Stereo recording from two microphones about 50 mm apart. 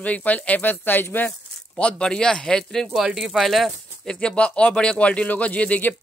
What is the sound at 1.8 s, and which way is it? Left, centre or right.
Speech, left.